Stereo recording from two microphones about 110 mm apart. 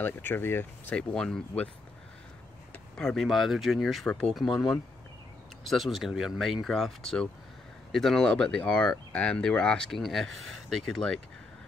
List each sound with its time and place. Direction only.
0.0 s speech: 20° left (ahead or behind)
3.0 s speech: 5° left (ahead or behind)